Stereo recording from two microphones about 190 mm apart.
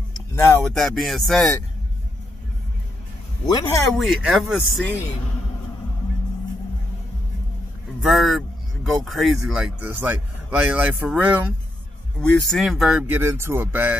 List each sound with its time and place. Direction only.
0.4 s speech: 15° left (ahead or behind)
0.7 s speech: centre (ahead or behind)
3.4 s speech: 20° left (ahead or behind)
4.0 s speech: centre (ahead or behind)
8.0 s speech: centre (ahead or behind)